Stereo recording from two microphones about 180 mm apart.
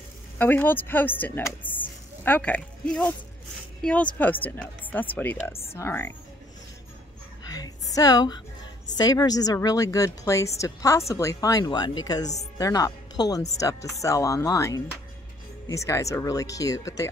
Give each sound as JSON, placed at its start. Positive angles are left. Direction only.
{"t": 0.4, "sound": "speech", "side_deg": 10}
{"t": 7.4, "sound": "a sound", "side_deg": 20}
{"t": 8.9, "sound": "a woman's voice", "side_deg": 20}